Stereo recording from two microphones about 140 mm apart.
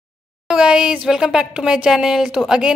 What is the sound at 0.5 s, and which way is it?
A woman's voice, 5° right (ahead or behind).